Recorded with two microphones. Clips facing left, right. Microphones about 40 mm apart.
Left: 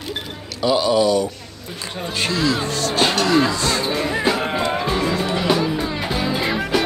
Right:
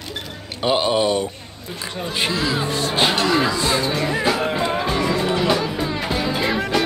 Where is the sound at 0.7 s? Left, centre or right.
Right.